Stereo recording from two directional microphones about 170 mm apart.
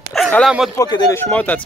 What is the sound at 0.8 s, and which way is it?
Speech, 20° left (ahead or behind).